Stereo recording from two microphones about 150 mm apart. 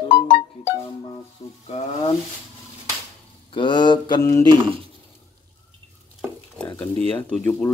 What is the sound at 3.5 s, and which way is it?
Mantra, 30° left (ahead or behind).